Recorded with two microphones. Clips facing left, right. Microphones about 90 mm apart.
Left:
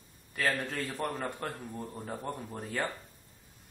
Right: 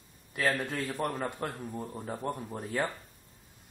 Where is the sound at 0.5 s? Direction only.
10° right (ahead or behind).